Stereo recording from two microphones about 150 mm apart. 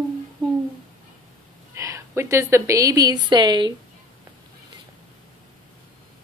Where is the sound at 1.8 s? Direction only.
20° right (ahead or behind).